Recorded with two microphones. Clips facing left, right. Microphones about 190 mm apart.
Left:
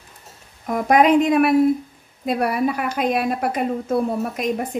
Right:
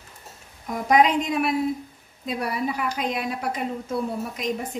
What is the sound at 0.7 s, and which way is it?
A woman's voice, 55° left (ahead or behind).